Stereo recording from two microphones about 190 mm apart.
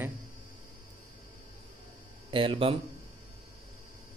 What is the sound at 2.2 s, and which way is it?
Speech, 30° right (ahead or behind).